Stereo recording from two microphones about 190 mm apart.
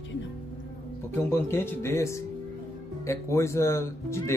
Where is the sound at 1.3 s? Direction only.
10° left (ahead or behind).